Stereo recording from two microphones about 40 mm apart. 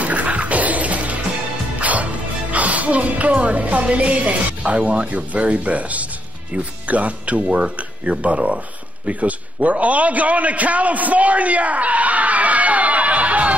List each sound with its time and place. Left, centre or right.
0.0 s music: right
2.5 s speech: right
7.3 s a man's voice: right